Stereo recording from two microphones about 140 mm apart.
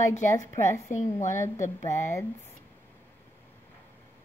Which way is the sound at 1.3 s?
20° left (ahead or behind).